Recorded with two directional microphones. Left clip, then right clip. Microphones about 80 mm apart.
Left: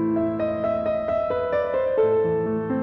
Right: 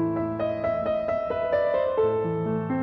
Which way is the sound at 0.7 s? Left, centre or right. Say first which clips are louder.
Left 1 dB; centre.